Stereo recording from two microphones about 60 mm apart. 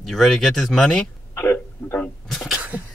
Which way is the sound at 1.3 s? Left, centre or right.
Left.